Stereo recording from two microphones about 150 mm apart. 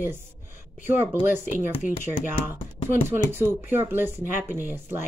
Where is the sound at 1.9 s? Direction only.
15° right (ahead or behind).